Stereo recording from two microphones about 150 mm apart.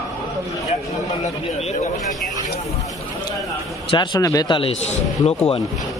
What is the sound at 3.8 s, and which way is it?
Speech, 30° left (ahead or behind).